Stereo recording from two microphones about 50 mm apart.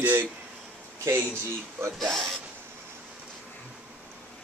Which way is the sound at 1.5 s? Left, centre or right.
Right.